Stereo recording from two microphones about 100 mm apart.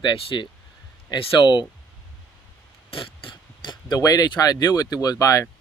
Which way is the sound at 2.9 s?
60° left (ahead or behind).